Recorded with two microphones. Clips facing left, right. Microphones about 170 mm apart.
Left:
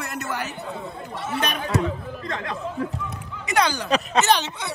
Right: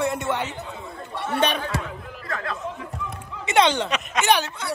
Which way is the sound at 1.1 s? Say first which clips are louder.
Right 2 dB; 60° right (ahead or behind).